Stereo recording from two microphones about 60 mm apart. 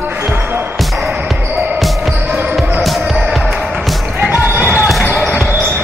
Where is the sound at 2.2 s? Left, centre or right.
Right.